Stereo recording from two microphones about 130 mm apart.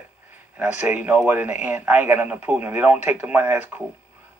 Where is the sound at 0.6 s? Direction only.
10° right (ahead or behind).